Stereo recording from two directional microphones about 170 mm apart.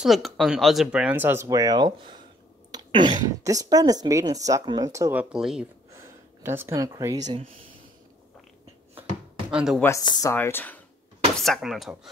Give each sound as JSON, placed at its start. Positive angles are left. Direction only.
{"t": 0.0, "sound": "speech", "side_deg": 0}
{"t": 5.3, "sound": "speech", "side_deg": -5}
{"t": 5.9, "sound": "a sound", "side_deg": -15}
{"t": 9.5, "sound": "speech", "side_deg": -5}
{"t": 9.8, "sound": "speech", "side_deg": 15}
{"t": 10.3, "sound": "speech", "side_deg": 10}